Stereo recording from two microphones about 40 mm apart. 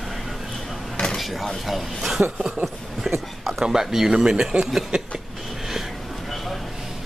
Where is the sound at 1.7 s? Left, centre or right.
Centre.